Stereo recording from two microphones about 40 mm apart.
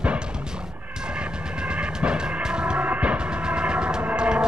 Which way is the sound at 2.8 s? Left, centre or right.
Right.